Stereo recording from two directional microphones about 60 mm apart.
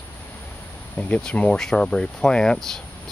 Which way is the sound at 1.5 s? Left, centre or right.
Centre.